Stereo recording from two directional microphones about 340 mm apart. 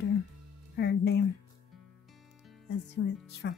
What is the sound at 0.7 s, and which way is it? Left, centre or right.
Music, left.